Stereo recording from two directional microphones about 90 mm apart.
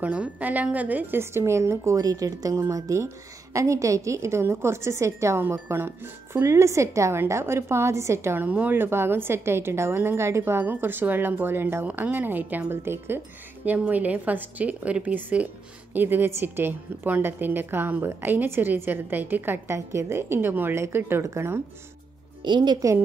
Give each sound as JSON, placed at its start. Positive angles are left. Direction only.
{"t": 0.0, "sound": "a woman's voice", "side_deg": -15}
{"t": 8.5, "sound": "a woman's voice", "side_deg": -20}
{"t": 22.4, "sound": "a woman's voice", "side_deg": -55}